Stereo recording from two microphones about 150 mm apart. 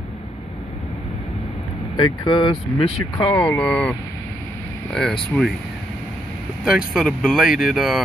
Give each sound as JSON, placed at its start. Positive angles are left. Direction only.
{"t": 2.0, "sound": "speech", "side_deg": 30}
{"t": 3.3, "sound": "speech", "side_deg": 10}
{"t": 4.9, "sound": "speech", "side_deg": 5}
{"t": 6.9, "sound": "speech", "side_deg": 0}